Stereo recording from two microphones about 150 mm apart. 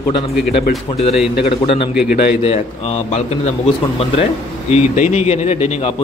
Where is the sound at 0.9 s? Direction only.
45° left (ahead or behind).